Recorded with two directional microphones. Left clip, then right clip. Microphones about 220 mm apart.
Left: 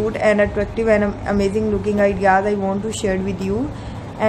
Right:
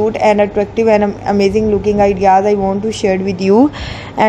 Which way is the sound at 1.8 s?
15° right (ahead or behind).